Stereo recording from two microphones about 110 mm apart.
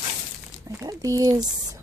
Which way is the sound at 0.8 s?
35° right (ahead or behind).